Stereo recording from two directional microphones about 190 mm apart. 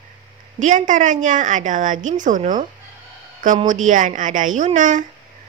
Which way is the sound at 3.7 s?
40° right (ahead or behind).